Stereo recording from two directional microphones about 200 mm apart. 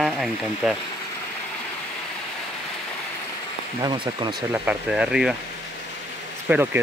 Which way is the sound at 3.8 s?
20° right (ahead or behind).